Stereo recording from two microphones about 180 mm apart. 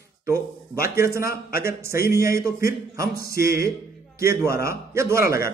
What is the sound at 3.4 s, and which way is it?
A man's voice, 15° right (ahead or behind).